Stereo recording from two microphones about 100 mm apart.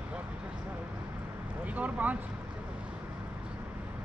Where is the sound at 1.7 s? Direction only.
15° right (ahead or behind).